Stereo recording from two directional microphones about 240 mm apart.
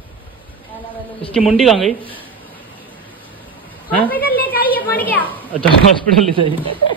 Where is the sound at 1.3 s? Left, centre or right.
Centre.